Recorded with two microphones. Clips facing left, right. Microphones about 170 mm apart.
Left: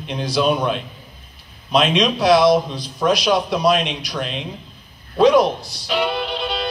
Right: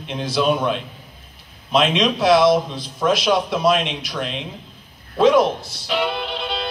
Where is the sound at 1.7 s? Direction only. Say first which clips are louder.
Left 1 dB; 20° right (ahead or behind).